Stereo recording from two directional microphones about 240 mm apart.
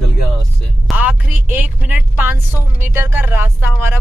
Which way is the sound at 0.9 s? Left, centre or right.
Centre.